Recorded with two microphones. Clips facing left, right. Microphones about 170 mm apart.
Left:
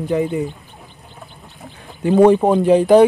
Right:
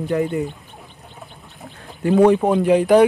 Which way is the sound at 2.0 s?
25° left (ahead or behind).